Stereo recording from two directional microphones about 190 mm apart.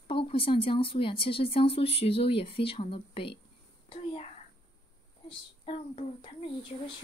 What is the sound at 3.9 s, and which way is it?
Whispering, 35° left (ahead or behind).